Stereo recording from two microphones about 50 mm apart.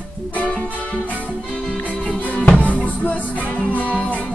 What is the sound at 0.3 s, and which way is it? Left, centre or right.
Music, left.